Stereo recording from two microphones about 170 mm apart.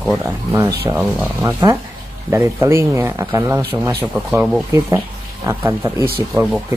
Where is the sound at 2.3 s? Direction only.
15° right (ahead or behind).